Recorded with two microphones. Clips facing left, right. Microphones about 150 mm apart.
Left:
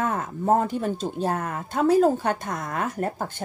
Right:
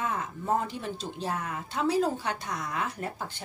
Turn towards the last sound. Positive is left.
turn(degrees=45)  # may be behind; listen again after turning